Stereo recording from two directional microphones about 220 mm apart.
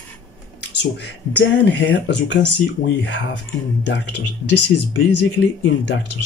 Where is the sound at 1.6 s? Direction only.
55° left (ahead or behind).